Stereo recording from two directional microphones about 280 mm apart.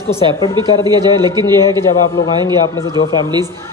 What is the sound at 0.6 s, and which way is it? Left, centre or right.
A man's voice, centre.